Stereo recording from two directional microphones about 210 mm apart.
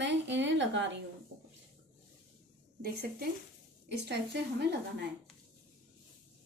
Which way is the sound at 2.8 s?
45° right (ahead or behind).